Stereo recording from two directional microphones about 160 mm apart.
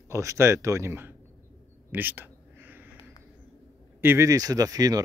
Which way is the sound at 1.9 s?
10° right (ahead or behind).